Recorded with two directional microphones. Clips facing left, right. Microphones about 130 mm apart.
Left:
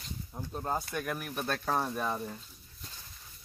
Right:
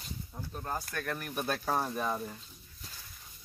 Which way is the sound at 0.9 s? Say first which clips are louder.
Left 2 dB; 10° left (ahead or behind).